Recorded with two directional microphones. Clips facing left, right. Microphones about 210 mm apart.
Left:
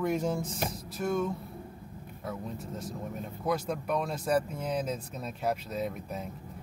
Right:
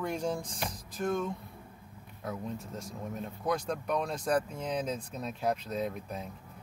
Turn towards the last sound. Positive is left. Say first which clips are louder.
# left 1 dB
turn(degrees=5)  # may be behind; listen again after turning